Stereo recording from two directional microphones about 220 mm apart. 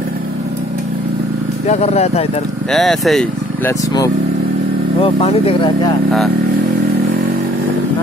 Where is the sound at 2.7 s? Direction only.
Centre (ahead or behind).